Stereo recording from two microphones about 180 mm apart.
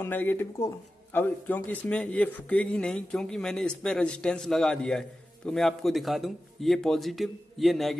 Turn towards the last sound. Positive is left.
turn(degrees=0)  # may be behind; listen again after turning